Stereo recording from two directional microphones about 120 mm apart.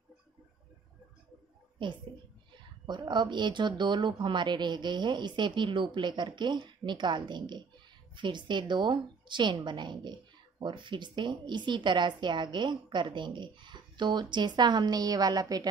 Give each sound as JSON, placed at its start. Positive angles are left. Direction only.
{"t": 1.8, "sound": "a woman's voice", "side_deg": -40}